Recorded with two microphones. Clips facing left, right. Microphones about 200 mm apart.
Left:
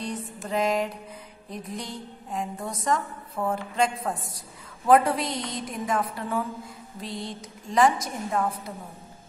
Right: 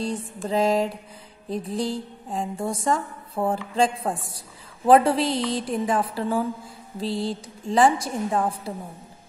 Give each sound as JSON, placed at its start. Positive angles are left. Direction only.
{"t": 0.5, "sound": "a woman's voice", "side_deg": -30}